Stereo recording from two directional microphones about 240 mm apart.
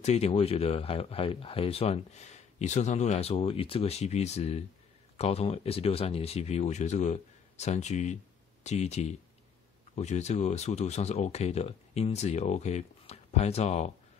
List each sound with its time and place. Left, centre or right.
0.0 s speech: left